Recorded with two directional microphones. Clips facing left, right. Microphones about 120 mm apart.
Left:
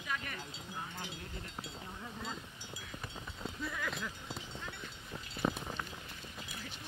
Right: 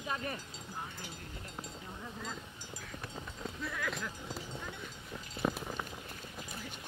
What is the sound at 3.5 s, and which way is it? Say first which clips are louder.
Sheep: right 1 dB; centre (ahead or behind).